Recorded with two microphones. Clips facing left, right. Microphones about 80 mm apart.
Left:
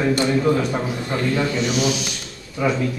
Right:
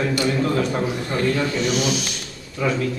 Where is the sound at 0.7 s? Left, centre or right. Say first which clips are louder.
Right 1 dB; centre.